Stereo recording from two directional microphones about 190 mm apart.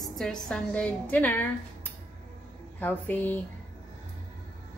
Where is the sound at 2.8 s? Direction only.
10° left (ahead or behind).